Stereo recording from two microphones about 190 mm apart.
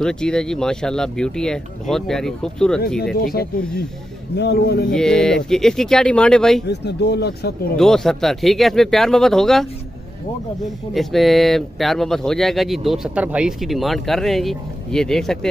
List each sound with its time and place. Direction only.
0.0 s speech: 5° left (ahead or behind)
3.2 s speech: 50° left (ahead or behind)
4.9 s speech: 5° left (ahead or behind)
6.7 s speech: 60° left (ahead or behind)
7.7 s speech: centre (ahead or behind)
10.9 s speech: centre (ahead or behind)